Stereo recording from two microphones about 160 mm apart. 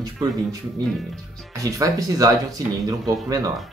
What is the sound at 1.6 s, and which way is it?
Speech, 20° right (ahead or behind).